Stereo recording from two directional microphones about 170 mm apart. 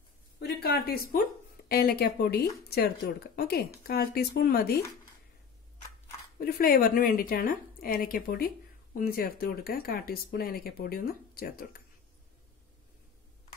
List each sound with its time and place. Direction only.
0.4 s a sound: 65° left (ahead or behind)
1.7 s speech: 60° left (ahead or behind)
6.4 s speech: 60° left (ahead or behind)